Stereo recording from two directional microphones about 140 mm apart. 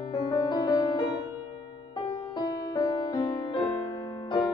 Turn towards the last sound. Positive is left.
turn(degrees=30)  # may be behind; listen again after turning